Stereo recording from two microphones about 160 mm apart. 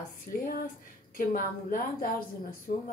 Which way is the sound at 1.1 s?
60° left (ahead or behind).